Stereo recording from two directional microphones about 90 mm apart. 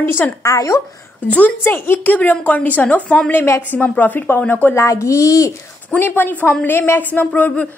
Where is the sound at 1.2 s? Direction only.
20° left (ahead or behind).